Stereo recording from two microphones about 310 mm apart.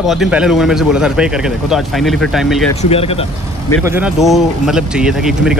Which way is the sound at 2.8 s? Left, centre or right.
Centre.